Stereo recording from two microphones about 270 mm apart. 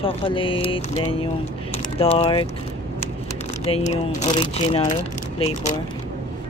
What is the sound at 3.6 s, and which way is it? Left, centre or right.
Speech, left.